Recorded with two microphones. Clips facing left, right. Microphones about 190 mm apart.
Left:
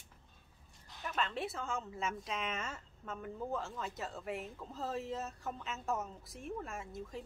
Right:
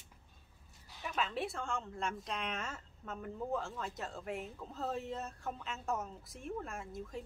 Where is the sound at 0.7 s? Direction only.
5° right (ahead or behind).